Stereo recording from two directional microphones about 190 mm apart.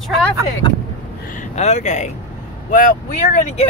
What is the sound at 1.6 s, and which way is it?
Speech, 35° left (ahead or behind).